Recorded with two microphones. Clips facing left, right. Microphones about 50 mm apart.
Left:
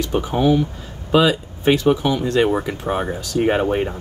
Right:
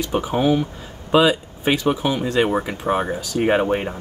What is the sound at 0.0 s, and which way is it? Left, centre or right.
Speech, centre.